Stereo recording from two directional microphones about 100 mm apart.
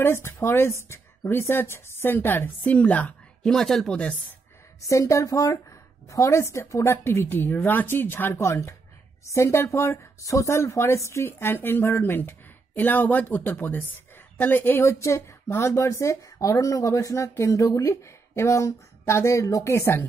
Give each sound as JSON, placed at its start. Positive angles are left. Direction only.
{"t": 0.0, "sound": "speech", "side_deg": 25}
{"t": 4.8, "sound": "speech", "side_deg": 30}